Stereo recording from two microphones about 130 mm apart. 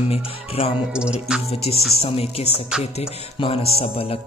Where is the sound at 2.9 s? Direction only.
50° left (ahead or behind).